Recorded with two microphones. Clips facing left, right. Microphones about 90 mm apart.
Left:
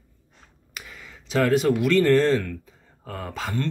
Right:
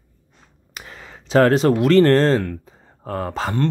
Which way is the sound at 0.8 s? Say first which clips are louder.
Right 4 dB; 40° right (ahead or behind).